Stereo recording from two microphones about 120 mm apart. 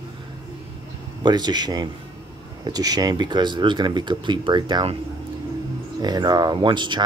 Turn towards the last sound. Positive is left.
turn(degrees=-40)  # may be behind; listen again after turning